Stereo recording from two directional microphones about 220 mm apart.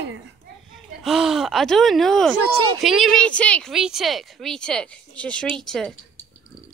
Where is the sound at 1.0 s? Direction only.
Centre (ahead or behind).